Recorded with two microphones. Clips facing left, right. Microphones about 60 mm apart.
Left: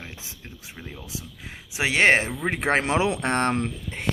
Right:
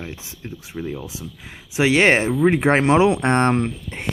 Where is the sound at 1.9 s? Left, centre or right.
Centre.